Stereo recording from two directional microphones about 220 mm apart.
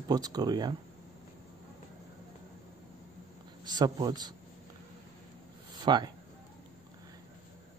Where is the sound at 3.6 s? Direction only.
20° right (ahead or behind).